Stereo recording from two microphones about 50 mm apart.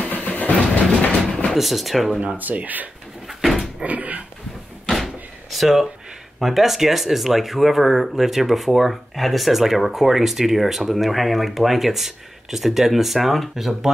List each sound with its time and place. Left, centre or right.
0.0 s vehicle: left
0.5 s train: left
1.5 s speech: centre
2.1 s speech: right
3.3 s dog: centre
3.8 s speech: right
4.8 s door: centre
6.4 s speech: centre